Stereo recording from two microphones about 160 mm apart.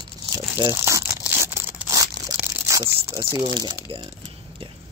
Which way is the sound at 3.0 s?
20° right (ahead or behind).